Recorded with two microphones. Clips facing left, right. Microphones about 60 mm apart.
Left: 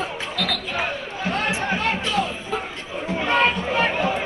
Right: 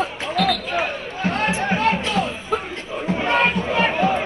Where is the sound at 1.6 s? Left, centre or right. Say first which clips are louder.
Right 3 dB; right.